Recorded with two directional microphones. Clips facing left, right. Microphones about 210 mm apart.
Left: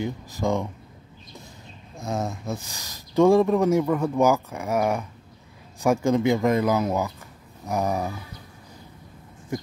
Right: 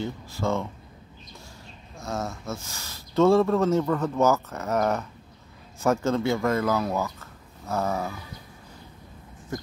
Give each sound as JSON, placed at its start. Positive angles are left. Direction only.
{"t": 0.0, "sound": "speech", "side_deg": 15}
{"t": 2.0, "sound": "speech", "side_deg": 15}